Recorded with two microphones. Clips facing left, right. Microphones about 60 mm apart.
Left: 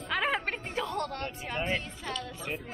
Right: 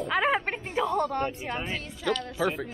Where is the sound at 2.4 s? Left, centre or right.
Right.